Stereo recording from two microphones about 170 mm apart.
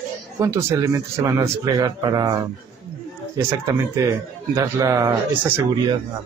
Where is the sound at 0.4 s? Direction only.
15° right (ahead or behind).